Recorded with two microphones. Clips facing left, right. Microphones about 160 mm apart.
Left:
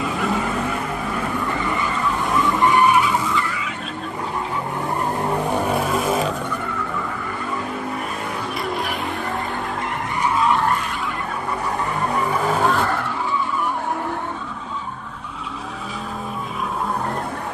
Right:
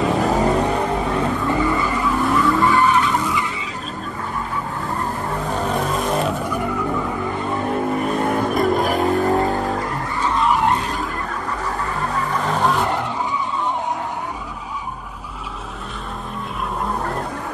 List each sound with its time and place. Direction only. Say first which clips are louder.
0.2 s vehicle: right 5 dB; 40° right (ahead or behind)
1.6 s vehicle: right 4 dB; 20° left (ahead or behind)
5.5 s vehicle: left 1 dB; 10° left (ahead or behind)
8.5 s vehicle: right 7 dB; 45° right (ahead or behind)
10.2 s vehicle: even; 5° left (ahead or behind)
10.6 s vehicle: right 2 dB; 20° right (ahead or behind)